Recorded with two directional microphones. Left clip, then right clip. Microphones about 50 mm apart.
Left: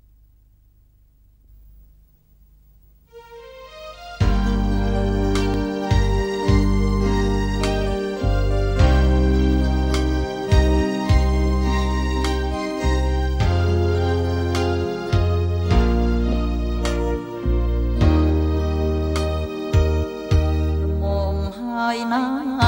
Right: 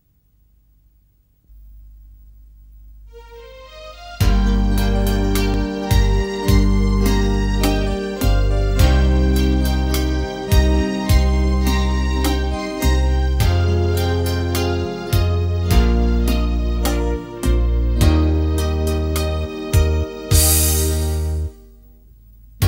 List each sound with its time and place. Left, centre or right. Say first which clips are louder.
3.2 s music: even; right
20.3 s music: right 11 dB; right
22.6 s music: left 6 dB; right